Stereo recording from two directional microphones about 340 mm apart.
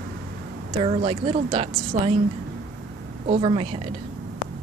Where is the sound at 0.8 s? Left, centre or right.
Centre.